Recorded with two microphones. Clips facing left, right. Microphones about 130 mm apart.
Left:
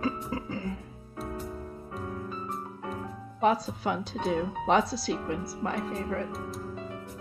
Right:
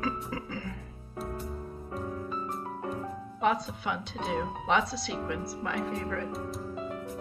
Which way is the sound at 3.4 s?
35° left (ahead or behind).